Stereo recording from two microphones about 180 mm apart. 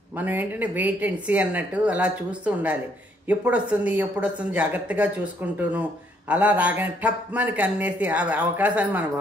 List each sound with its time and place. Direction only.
0.2 s speech: 10° right (ahead or behind)